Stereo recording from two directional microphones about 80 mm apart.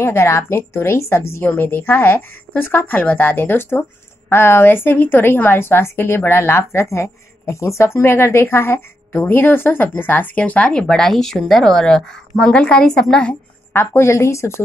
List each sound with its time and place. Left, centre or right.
0.0 s a woman's voice: left; by 13.4 s centre
13.7 s a woman's voice: left